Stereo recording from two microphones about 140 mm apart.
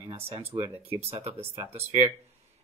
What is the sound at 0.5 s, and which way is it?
Speech, 15° right (ahead or behind).